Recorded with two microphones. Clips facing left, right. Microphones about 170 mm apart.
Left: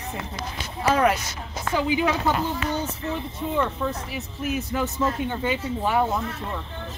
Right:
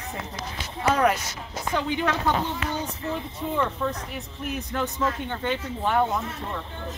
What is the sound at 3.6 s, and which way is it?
A woman's voice, 5° left (ahead or behind).